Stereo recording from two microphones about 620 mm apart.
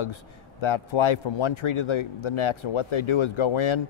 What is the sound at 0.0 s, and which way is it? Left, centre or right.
A man's voice, left.